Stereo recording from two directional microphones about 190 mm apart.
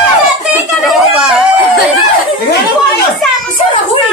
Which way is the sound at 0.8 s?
Centre (ahead or behind).